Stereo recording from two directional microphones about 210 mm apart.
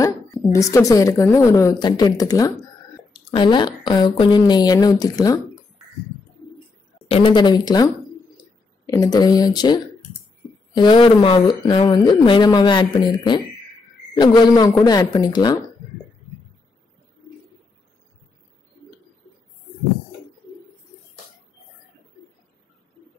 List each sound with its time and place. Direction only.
0.0 s a woman's voice: 15° left (ahead or behind)
7.1 s a woman's voice: 25° left (ahead or behind)